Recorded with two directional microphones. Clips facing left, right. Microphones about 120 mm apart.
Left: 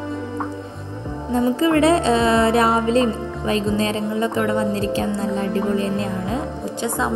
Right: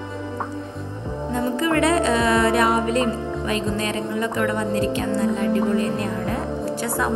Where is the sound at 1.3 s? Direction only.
30° left (ahead or behind).